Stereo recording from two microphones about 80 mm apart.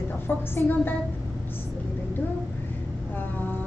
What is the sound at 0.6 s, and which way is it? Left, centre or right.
Speech, left.